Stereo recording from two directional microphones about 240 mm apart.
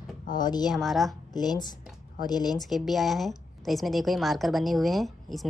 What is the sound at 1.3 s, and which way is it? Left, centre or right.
Speech, centre.